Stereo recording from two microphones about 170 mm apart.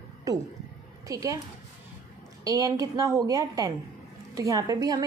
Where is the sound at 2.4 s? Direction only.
20° right (ahead or behind).